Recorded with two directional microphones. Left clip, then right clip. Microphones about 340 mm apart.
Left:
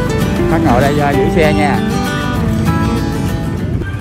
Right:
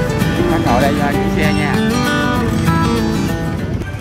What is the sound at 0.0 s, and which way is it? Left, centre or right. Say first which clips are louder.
Music: left 1 dB; centre.